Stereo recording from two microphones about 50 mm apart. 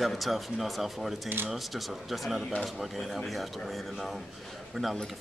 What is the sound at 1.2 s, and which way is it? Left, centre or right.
Speech, right.